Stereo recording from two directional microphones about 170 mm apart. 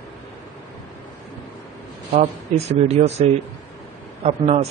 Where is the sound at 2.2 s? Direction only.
40° right (ahead or behind).